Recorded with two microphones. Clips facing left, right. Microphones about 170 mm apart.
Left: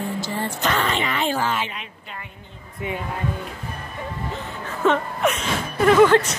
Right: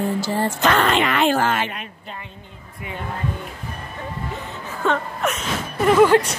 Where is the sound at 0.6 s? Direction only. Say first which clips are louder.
Right 5 dB; 70° right (ahead or behind); by 1.8 s 55° right (ahead or behind).